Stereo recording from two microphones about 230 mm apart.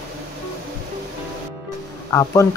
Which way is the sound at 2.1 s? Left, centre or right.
Centre.